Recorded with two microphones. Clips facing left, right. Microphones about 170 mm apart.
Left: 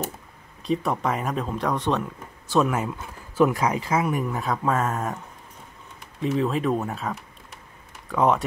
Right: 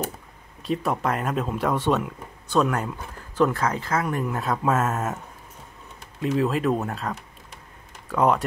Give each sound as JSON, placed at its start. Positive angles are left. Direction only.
{"t": 0.6, "sound": "speech", "side_deg": 0}
{"t": 6.2, "sound": "speech", "side_deg": 0}